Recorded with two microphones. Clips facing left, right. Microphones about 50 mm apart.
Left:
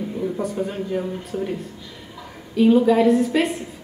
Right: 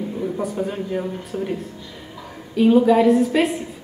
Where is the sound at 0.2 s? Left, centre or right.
Centre.